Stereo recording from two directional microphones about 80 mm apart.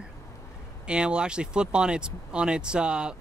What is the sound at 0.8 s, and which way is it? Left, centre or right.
Speech, centre.